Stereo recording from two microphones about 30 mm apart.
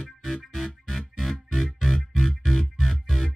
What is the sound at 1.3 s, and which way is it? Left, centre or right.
Music, centre.